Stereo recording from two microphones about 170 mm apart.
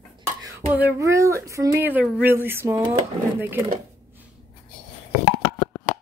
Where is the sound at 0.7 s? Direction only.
15° right (ahead or behind).